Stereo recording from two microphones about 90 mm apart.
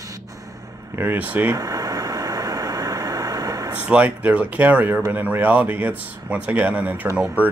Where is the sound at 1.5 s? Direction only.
40° right (ahead or behind).